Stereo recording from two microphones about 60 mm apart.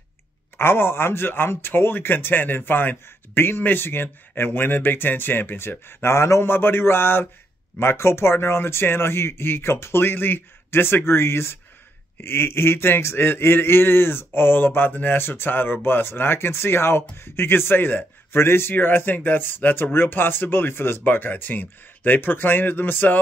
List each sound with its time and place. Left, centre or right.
0.6 s speech: left
6.5 s speech: left